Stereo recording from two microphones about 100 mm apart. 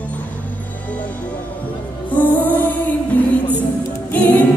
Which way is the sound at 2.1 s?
15° left (ahead or behind).